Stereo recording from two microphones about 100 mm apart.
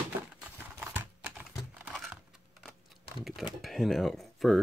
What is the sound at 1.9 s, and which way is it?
Computer keyboard, 5° right (ahead or behind).